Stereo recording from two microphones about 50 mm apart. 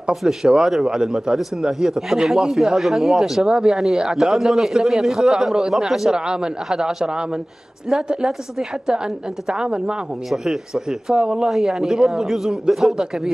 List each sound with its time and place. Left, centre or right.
0.1 s speech: centre
10.3 s speech: centre